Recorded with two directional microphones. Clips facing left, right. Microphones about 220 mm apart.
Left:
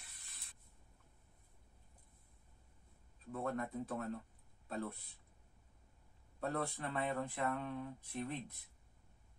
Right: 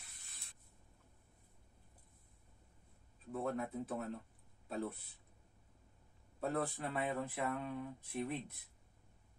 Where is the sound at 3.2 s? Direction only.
5° right (ahead or behind).